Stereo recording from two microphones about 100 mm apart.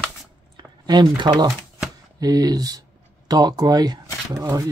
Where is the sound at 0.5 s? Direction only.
45° right (ahead or behind).